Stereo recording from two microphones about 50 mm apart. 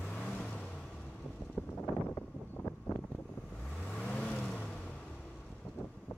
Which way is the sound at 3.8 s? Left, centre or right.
Centre.